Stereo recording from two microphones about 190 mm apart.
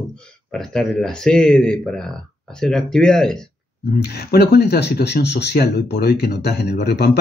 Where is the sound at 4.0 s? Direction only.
60° left (ahead or behind).